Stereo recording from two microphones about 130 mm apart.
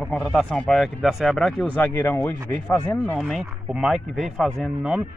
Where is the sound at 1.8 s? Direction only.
15° left (ahead or behind).